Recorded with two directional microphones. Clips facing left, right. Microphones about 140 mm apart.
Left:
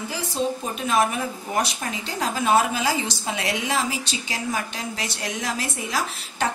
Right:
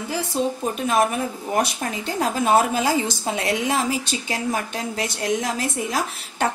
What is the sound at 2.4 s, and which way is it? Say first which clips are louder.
A woman's voice: right 1 dB; 45° right (ahead or behind).